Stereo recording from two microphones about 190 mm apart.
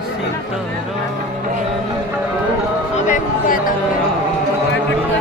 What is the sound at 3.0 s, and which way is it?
Music, 45° left (ahead or behind).